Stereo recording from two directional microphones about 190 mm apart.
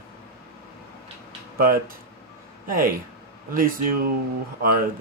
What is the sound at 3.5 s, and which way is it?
Speech, 45° right (ahead or behind).